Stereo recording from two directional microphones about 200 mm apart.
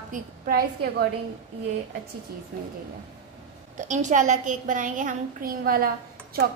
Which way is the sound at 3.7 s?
35° right (ahead or behind).